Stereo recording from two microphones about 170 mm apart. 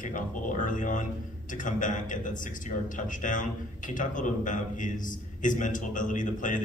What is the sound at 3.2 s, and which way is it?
A man's voice, 50° left (ahead or behind).